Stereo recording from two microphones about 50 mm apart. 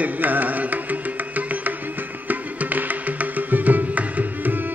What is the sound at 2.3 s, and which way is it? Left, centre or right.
Music, right.